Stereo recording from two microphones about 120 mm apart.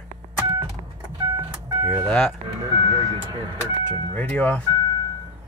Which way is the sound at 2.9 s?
40° right (ahead or behind).